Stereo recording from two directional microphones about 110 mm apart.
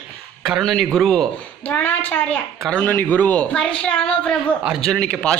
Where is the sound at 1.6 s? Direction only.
15° left (ahead or behind).